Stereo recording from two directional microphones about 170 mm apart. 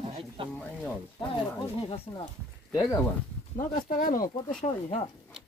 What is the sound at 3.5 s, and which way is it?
Speech, 50° left (ahead or behind).